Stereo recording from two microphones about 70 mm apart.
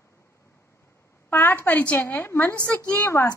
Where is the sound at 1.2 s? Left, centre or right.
Left.